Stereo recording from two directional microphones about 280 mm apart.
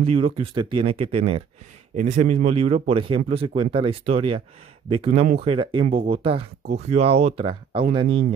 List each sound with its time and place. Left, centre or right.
0.0 s speech: right